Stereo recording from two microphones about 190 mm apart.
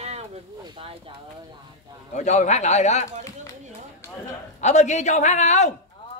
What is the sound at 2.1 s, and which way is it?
Speech, 35° left (ahead or behind).